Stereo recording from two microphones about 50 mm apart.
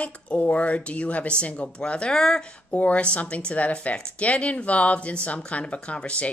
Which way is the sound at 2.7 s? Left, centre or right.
Left.